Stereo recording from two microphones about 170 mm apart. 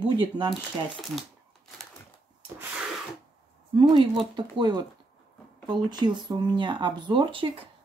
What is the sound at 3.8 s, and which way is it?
Speech, 30° right (ahead or behind).